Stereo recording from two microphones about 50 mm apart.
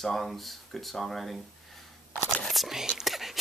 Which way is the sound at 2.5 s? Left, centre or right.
Centre.